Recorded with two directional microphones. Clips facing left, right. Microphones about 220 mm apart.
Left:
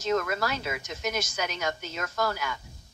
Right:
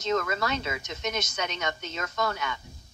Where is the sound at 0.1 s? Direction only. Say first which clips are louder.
Even; 10° left (ahead or behind).